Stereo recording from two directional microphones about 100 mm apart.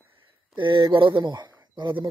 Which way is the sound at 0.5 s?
55° right (ahead or behind).